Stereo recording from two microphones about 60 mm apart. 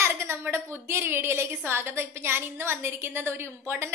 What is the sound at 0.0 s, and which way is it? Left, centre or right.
A woman's voice, right.